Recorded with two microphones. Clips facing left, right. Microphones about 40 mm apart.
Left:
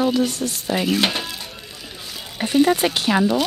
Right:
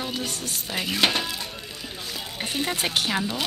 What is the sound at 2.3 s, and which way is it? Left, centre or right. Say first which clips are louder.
Music: left 12 dB; centre.